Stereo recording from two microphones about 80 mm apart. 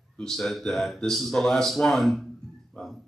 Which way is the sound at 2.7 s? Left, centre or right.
Centre.